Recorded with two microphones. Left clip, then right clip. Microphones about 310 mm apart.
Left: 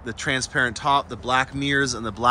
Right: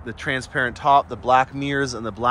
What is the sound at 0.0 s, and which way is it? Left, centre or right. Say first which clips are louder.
Speech: left 1 dB; centre.